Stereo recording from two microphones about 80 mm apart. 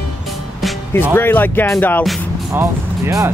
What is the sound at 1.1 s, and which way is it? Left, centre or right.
Speech, left.